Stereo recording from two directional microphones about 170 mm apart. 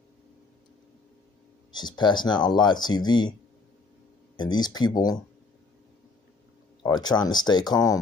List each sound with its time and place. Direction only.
1.7 s speech: 25° left (ahead or behind)
4.4 s speech: 25° left (ahead or behind)
6.8 s speech: 25° left (ahead or behind)